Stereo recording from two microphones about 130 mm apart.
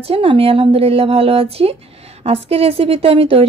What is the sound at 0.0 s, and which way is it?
Speech, 45° right (ahead or behind).